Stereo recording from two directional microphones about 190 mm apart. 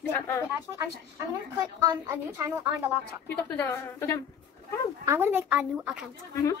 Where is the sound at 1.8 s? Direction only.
20° right (ahead or behind).